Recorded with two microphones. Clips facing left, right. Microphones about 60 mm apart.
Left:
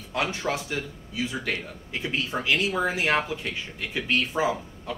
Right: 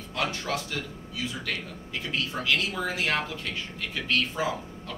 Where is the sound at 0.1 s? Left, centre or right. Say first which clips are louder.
Left 2 dB; centre.